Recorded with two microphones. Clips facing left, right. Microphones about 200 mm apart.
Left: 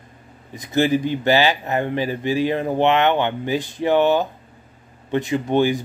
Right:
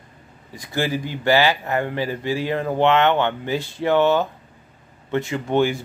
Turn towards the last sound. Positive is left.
turn(degrees=15)  # may be behind; listen again after turning